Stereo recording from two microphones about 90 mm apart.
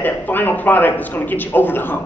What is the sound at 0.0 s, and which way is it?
A man's voice, 20° left (ahead or behind).